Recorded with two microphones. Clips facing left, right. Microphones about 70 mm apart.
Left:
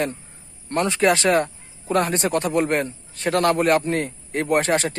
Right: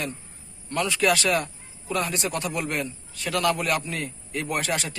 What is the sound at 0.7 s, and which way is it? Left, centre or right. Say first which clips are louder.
Speech: left 4 dB; left.